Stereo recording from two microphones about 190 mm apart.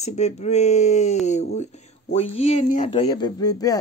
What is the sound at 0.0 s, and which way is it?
Speech, 35° left (ahead or behind).